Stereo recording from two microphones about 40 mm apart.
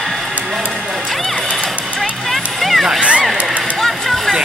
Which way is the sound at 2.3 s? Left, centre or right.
Centre.